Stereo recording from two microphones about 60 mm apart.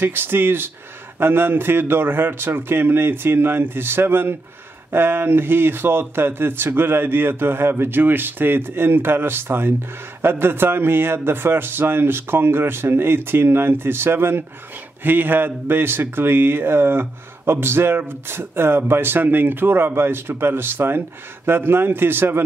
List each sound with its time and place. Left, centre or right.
0.0 s a man's voice: right